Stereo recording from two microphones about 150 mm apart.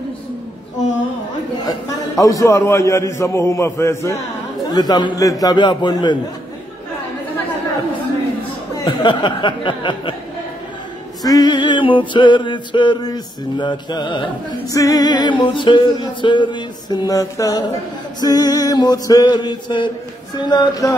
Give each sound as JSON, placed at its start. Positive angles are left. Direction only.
{"t": 1.7, "sound": "a man's voice", "side_deg": 20}
{"t": 8.8, "sound": "music", "side_deg": 30}
{"t": 11.2, "sound": "music", "side_deg": 25}
{"t": 18.2, "sound": "a man's voice", "side_deg": 25}